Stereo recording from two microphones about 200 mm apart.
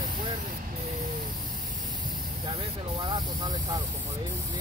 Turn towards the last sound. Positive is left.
turn(degrees=-20)  # may be behind; listen again after turning